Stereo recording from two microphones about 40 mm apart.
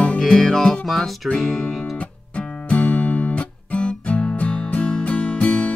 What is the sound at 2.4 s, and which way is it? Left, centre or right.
Music, left.